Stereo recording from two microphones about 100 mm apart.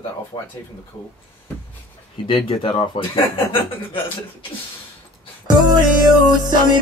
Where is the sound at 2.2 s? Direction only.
60° left (ahead or behind).